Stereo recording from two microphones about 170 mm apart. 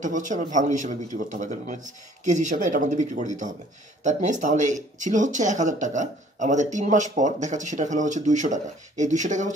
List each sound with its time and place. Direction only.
0.0 s speech: 50° right (ahead or behind)